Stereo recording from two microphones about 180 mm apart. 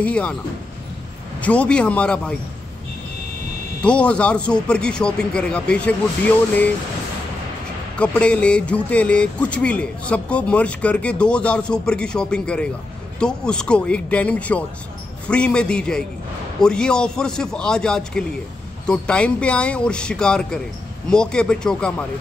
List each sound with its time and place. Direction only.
0.0 s speech: 5° left (ahead or behind)
1.4 s speech: 5° left (ahead or behind)
3.8 s a man's voice: 5° left (ahead or behind)
8.0 s a man's voice: 5° left (ahead or behind)